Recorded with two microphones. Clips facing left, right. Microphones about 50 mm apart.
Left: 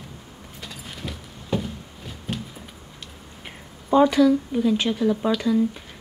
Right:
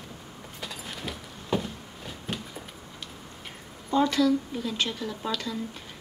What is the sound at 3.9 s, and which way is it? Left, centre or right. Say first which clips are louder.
Speech: left 7 dB; centre.